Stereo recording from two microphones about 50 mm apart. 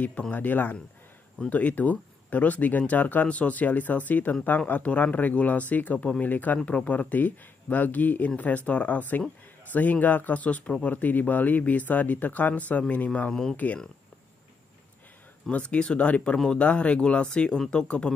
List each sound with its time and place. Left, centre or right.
0.3 s speech: left
13.3 s speech: centre
15.5 s speech: left